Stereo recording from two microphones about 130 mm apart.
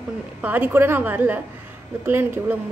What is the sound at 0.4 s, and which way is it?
A woman's voice, 15° right (ahead or behind).